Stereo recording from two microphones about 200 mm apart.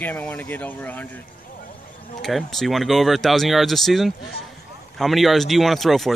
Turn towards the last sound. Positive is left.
turn(degrees=0)  # may be behind; listen again after turning